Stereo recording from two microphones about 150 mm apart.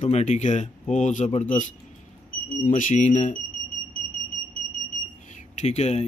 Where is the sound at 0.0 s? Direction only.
50° left (ahead or behind).